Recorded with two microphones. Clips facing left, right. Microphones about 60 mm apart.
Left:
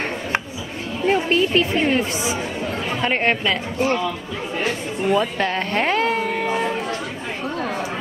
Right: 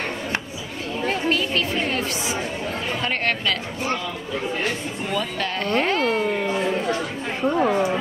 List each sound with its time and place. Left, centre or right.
1.0 s chatter: left
3.0 s speech: left
5.1 s speech: left
7.4 s speech: centre